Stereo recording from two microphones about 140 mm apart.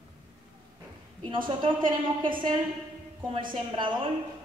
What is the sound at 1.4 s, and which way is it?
Speech, 35° right (ahead or behind).